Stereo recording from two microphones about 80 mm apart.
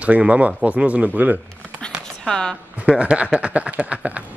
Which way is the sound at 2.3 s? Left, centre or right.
Centre.